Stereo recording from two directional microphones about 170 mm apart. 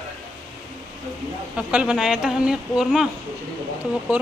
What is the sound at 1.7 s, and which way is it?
Speech, 5° right (ahead or behind).